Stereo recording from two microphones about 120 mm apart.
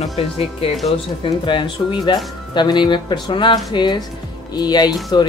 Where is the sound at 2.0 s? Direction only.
35° left (ahead or behind).